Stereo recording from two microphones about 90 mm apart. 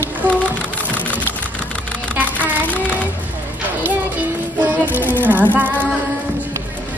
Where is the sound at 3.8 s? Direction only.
20° right (ahead or behind).